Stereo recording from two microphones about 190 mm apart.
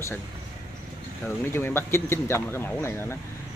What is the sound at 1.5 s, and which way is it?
Speech, 10° left (ahead or behind).